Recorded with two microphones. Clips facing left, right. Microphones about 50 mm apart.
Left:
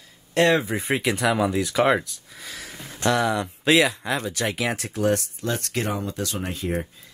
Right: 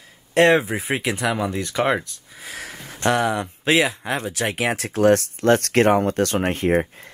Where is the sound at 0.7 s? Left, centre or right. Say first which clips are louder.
Even; centre.